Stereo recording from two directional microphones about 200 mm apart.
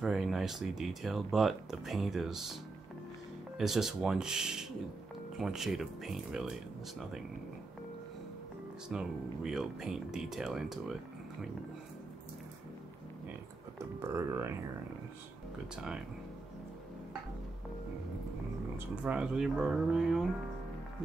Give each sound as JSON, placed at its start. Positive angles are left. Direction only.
{"t": 0.0, "sound": "speech", "side_deg": 0}
{"t": 3.5, "sound": "speech", "side_deg": 0}
{"t": 8.8, "sound": "speech", "side_deg": -5}
{"t": 13.9, "sound": "speech", "side_deg": -10}
{"t": 15.7, "sound": "speech", "side_deg": -5}
{"t": 19.0, "sound": "speech", "side_deg": -5}